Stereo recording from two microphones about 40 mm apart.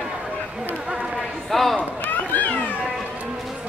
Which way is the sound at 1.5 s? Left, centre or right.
Centre.